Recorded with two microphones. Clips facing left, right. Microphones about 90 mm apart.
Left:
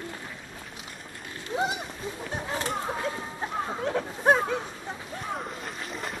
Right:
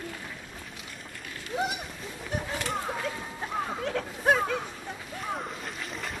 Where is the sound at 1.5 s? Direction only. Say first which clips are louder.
Left 2 dB; 25° left (ahead or behind).